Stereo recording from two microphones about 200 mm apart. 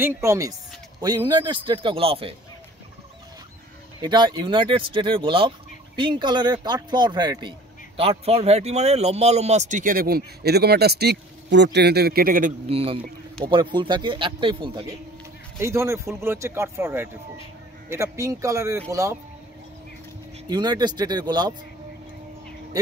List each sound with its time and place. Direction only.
0.0 s speech: 15° right (ahead or behind)
4.0 s speech: 20° right (ahead or behind); by 12.5 s 45° right (ahead or behind)
12.6 s speech: 30° right (ahead or behind)
20.4 s speech: 20° right (ahead or behind)